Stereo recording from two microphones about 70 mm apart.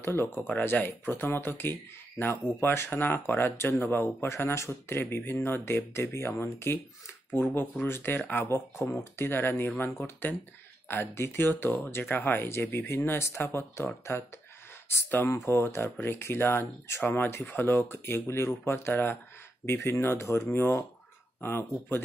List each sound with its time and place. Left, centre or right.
0.0 s speech: left
7.3 s speech: left
15.3 s speech: left
15.6 s speech: left